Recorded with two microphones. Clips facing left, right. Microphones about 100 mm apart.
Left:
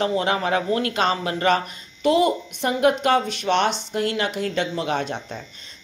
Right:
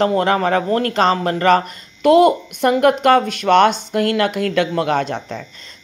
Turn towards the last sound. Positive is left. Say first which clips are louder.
# right 6 dB
turn(degrees=-45)  # may be behind; listen again after turning